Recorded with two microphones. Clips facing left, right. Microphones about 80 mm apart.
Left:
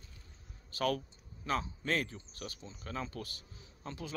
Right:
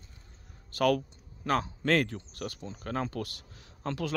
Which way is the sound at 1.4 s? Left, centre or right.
Right.